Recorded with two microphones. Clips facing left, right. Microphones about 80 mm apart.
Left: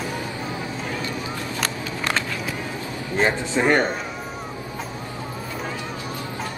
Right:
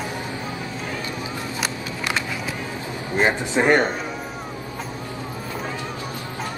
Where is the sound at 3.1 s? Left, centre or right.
Centre.